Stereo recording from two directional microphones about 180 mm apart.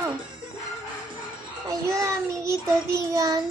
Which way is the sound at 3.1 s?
20° right (ahead or behind).